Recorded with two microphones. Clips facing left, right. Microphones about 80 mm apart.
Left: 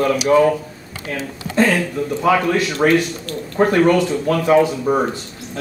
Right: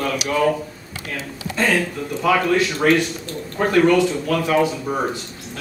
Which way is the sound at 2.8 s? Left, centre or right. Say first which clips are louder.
Left 2 dB; left.